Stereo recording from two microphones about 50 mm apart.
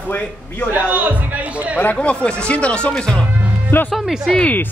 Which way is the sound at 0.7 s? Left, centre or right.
Right.